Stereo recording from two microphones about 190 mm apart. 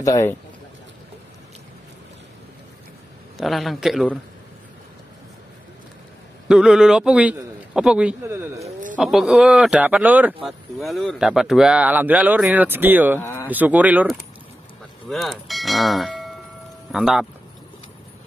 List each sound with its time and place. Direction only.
0.0 s speech: 15° left (ahead or behind)
3.3 s a man's voice: centre (ahead or behind)
6.5 s a man's voice: 5° right (ahead or behind)
8.9 s a man's voice: centre (ahead or behind)
13.2 s a sound: 15° left (ahead or behind)
13.5 s a man's voice: 10° right (ahead or behind)